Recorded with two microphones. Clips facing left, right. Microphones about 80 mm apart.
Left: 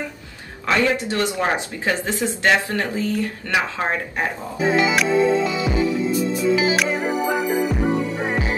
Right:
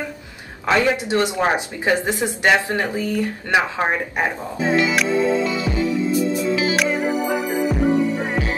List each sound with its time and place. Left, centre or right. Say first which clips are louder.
0.7 s speech: right 2 dB; right
4.6 s speech: left 1 dB; centre
6.5 s music: left 1 dB; centre
8.3 s music: even; centre